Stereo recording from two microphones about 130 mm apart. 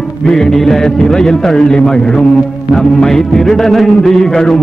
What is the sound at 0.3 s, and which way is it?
A man's voice, 5° left (ahead or behind).